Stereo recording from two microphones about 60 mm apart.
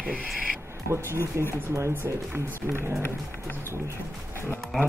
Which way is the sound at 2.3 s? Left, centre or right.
Right.